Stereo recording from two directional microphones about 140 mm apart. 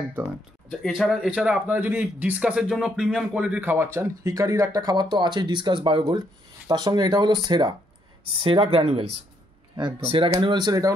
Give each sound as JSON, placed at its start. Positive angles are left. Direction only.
{"t": 0.7, "sound": "speech", "side_deg": 0}